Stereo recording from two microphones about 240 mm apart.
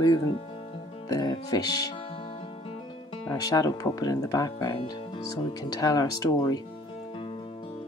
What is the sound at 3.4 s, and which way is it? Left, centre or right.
Speech, centre.